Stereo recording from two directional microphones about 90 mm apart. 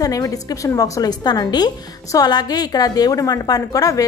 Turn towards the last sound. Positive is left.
turn(degrees=40)  # may be behind; listen again after turning